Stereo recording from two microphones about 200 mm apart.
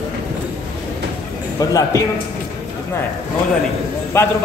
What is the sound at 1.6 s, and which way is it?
Speech, 15° left (ahead or behind).